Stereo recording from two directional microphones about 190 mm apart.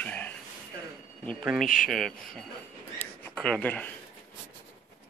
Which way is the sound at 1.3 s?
Centre (ahead or behind).